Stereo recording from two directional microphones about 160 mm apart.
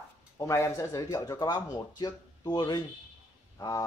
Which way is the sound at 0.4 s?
20° left (ahead or behind).